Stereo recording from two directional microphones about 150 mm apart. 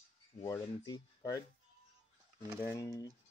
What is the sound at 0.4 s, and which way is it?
Speech, 25° left (ahead or behind).